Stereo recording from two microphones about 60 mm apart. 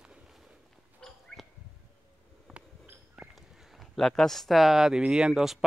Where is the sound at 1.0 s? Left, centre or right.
Centre.